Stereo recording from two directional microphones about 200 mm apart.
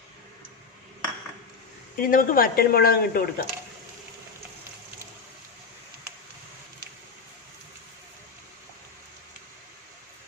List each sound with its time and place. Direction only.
2.0 s speech: 45° left (ahead or behind)